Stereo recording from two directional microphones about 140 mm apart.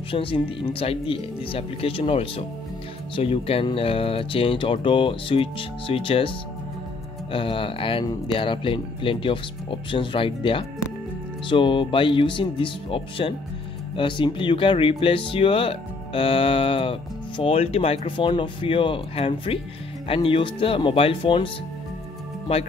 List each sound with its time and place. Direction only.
0.1 s speech: 40° left (ahead or behind)
7.3 s speech: 40° left (ahead or behind)